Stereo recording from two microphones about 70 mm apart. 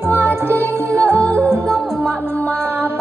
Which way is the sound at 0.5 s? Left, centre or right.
Right.